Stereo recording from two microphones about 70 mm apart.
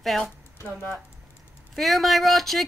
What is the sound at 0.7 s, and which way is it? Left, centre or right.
Speech, left.